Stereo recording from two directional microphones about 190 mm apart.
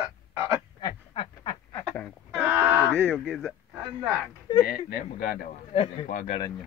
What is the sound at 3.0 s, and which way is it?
Speech, centre (ahead or behind).